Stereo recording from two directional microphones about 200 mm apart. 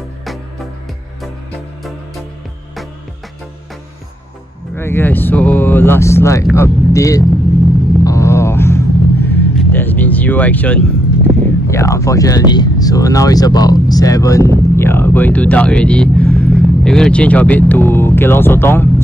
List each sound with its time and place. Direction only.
4.7 s speech: 10° left (ahead or behind)
8.0 s vehicle: 15° left (ahead or behind)
11.7 s speech: 15° left (ahead or behind)